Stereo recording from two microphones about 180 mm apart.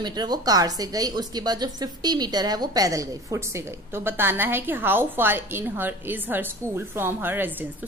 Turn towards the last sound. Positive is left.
turn(degrees=-10)  # may be behind; listen again after turning